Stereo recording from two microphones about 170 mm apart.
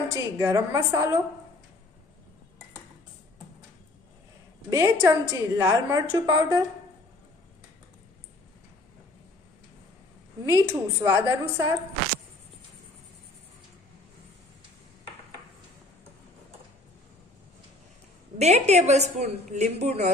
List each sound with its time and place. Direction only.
0.2 s a woman's voice: 15° right (ahead or behind)
4.6 s a woman's voice: 15° right (ahead or behind)
10.4 s a woman's voice: 15° right (ahead or behind)
18.4 s a woman's voice: 40° right (ahead or behind)